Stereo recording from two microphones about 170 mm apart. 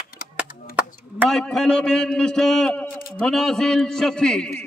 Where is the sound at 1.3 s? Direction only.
5° left (ahead or behind).